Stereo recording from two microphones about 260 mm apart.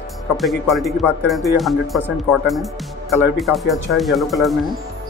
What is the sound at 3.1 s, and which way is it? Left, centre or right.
Speech, centre.